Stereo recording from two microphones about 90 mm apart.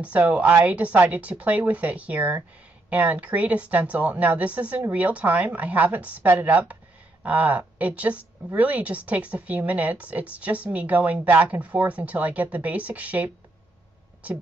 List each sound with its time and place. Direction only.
0.0 s a woman's voice: 15° right (ahead or behind)